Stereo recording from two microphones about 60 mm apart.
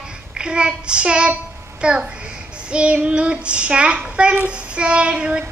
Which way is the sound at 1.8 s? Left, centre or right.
Centre.